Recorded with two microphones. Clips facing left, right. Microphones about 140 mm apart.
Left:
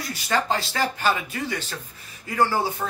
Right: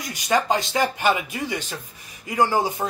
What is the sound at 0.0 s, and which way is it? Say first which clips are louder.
Speech: right 3 dB; 15° right (ahead or behind).